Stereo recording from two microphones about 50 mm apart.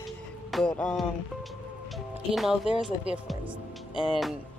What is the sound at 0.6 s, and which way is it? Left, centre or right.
Music, centre.